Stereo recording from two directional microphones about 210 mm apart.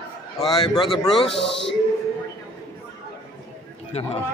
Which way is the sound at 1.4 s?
55° left (ahead or behind).